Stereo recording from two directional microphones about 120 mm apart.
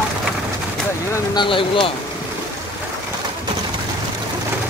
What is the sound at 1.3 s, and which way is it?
Speech, 45° left (ahead or behind).